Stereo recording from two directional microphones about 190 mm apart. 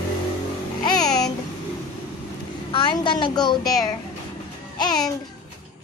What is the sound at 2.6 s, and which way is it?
A child's voice, 25° left (ahead or behind).